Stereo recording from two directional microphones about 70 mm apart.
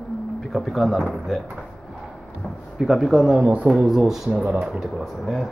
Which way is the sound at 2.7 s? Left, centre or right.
Centre.